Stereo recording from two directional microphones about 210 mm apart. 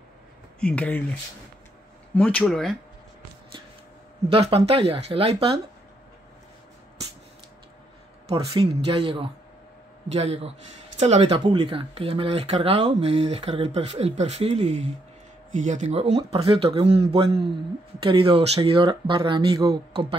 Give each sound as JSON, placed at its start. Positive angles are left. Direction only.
{"t": 0.6, "sound": "speech", "side_deg": 5}
{"t": 2.1, "sound": "speech", "side_deg": 5}
{"t": 4.3, "sound": "speech", "side_deg": -25}
{"t": 8.3, "sound": "speech", "side_deg": -25}